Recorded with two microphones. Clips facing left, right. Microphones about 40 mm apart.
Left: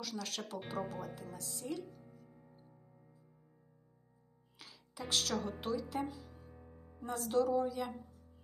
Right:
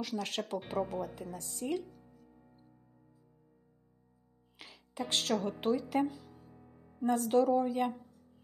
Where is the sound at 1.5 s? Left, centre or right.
Right.